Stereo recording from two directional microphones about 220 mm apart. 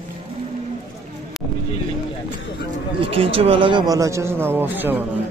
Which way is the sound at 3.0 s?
25° right (ahead or behind).